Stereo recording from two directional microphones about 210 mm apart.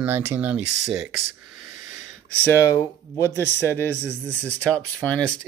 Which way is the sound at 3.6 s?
10° left (ahead or behind).